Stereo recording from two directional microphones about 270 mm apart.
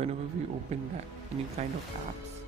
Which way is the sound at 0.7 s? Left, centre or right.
Right.